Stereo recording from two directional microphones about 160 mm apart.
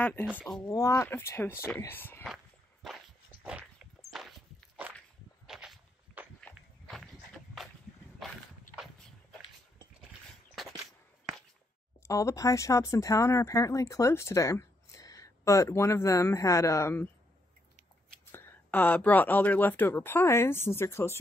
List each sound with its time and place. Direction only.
0.0 s speech: 10° left (ahead or behind)
0.7 s speech: 20° left (ahead or behind)
2.2 s walk: centre (ahead or behind)
4.1 s walk: centre (ahead or behind)
8.2 s a sound: centre (ahead or behind)
12.0 s speech: 20° left (ahead or behind)
18.3 s speech: 15° left (ahead or behind)